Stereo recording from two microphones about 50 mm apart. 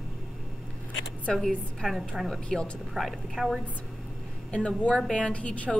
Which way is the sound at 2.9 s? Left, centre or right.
Centre.